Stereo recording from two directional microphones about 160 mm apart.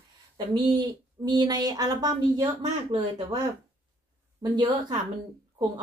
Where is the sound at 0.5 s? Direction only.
25° right (ahead or behind).